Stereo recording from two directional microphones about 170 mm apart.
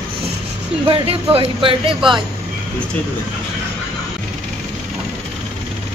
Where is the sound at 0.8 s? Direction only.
30° right (ahead or behind).